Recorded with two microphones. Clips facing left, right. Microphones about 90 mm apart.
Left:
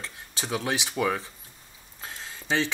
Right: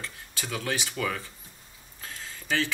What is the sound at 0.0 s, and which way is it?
Speech, 20° left (ahead or behind).